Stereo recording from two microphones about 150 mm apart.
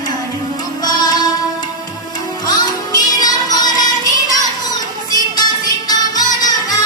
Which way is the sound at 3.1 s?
25° left (ahead or behind).